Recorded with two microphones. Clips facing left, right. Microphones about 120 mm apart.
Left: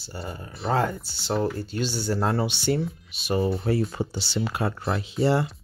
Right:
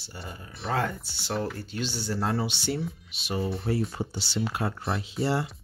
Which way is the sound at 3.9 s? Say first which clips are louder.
Left 3 dB; 80° left.